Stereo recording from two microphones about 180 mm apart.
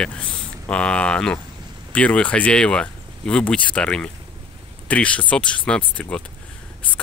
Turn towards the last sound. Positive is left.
turn(degrees=5)  # may be behind; listen again after turning